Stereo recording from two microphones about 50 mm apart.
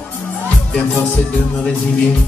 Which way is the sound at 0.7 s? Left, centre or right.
Centre.